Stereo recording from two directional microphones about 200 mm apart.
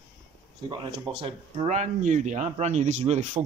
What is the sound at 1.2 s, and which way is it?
Speech, 30° right (ahead or behind).